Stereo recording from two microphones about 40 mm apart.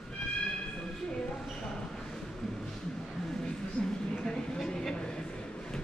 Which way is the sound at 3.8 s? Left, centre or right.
Left.